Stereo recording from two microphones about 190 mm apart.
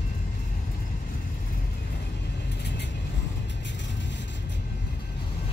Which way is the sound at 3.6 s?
70° left (ahead or behind).